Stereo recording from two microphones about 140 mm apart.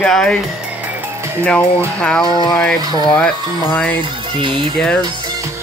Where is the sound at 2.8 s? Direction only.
25° right (ahead or behind).